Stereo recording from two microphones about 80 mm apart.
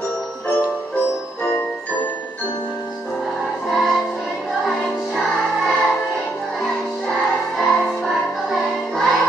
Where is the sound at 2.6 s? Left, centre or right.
Centre.